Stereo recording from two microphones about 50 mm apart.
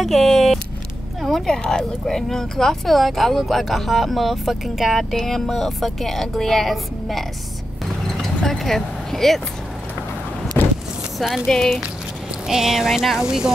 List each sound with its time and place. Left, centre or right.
0.0 s vehicle: centre
1.7 s speech: centre
8.2 s vehicle: centre
10.6 s vehicle: left
11.4 s speech: centre
12.4 s speech: centre